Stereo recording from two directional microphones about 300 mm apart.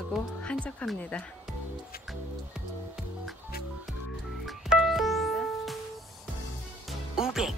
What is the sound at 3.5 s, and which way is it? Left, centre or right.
Music, left.